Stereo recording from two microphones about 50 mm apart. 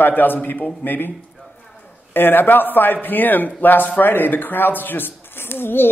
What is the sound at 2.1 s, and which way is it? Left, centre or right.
Speech, left.